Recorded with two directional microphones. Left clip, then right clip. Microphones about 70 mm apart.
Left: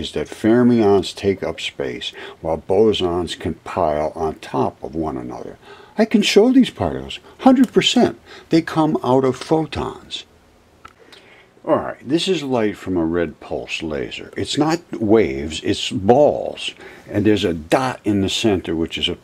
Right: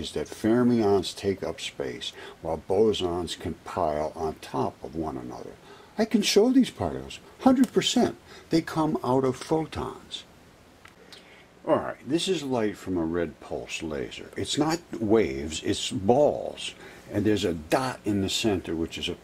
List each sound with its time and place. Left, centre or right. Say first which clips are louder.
0.0 s speech: left 8 dB; centre
4.8 s speech: left 8 dB; centre
11.6 s speech: left 6 dB; centre